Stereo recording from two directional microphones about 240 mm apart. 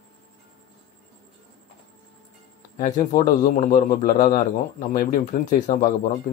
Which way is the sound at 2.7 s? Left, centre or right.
Left.